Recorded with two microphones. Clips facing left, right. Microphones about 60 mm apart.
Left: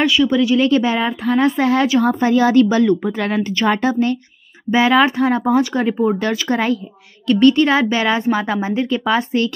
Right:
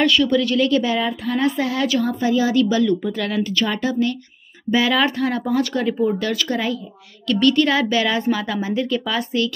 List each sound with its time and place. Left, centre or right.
0.0 s speech: centre
0.6 s speech: left
2.6 s a woman's voice: left